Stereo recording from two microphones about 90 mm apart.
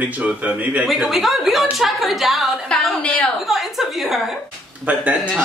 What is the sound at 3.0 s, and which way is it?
Speech, 10° left (ahead or behind).